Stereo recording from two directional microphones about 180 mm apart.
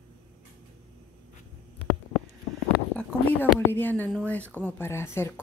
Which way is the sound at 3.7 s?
10° left (ahead or behind).